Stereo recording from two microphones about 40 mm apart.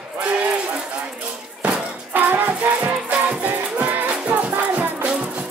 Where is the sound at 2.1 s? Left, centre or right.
Right.